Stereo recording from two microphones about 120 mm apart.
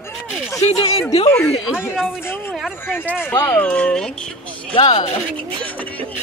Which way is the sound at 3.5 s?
10° left (ahead or behind).